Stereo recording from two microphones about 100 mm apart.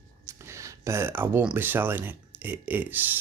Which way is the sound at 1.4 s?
15° right (ahead or behind).